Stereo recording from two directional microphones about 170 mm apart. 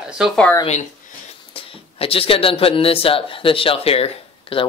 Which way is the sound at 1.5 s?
30° left (ahead or behind).